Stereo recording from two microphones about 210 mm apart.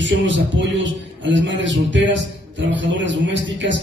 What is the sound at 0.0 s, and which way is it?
A man's voice, 60° right (ahead or behind).